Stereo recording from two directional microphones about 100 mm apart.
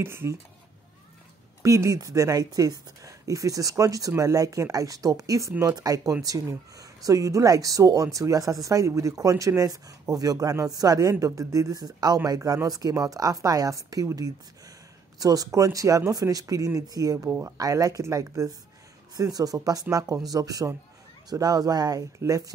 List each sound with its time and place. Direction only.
0.0 s speech: 25° right (ahead or behind)
1.6 s speech: 35° right (ahead or behind)